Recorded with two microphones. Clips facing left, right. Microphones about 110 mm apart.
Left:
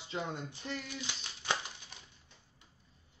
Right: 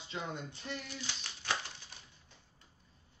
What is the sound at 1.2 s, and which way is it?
Crumpling, 15° left (ahead or behind).